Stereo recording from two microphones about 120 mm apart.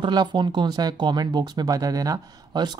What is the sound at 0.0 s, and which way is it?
Speech, 40° right (ahead or behind).